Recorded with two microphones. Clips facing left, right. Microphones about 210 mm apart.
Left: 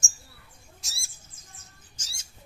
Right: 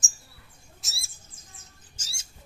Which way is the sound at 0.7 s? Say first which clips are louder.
Right 1 dB; centre (ahead or behind).